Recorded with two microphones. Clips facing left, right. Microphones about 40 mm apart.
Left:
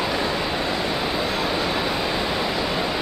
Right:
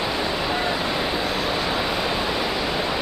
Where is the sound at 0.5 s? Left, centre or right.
Centre.